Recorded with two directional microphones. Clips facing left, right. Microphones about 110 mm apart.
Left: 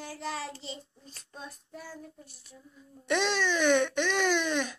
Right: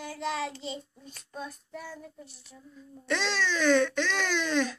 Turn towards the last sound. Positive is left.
turn(degrees=15)  # may be behind; listen again after turning